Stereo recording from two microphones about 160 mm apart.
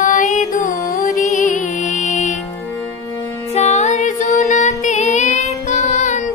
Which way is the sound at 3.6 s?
45° left (ahead or behind).